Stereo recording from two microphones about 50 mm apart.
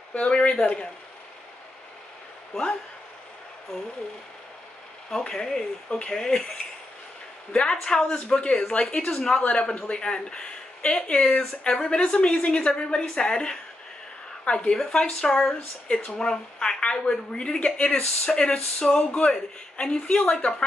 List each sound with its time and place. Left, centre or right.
0.3 s speech: centre
3.7 s speech: centre
5.1 s speech: centre
7.7 s speech: centre
9.4 s a woman's voice: left